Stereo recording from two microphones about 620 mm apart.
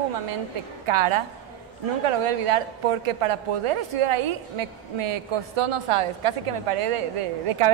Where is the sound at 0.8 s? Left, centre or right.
Right.